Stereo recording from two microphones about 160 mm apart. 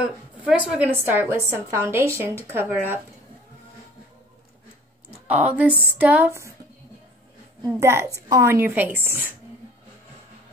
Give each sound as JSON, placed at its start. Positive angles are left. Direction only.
{"t": 0.0, "sound": "a woman's voice", "side_deg": -5}
{"t": 5.3, "sound": "a woman's voice", "side_deg": -10}
{"t": 7.6, "sound": "a woman's voice", "side_deg": -15}